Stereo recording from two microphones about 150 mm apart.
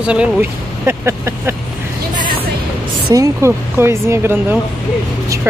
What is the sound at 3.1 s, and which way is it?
Speech, 20° right (ahead or behind).